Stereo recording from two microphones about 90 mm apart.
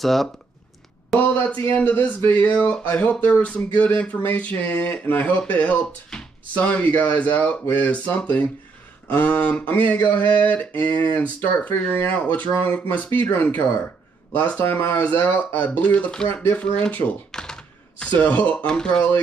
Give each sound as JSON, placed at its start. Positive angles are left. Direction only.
{"t": 0.0, "sound": "speech", "side_deg": 0}
{"t": 1.1, "sound": "speech", "side_deg": 20}